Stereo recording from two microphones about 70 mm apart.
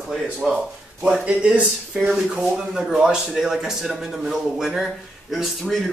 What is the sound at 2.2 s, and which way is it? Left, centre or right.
Speech, centre.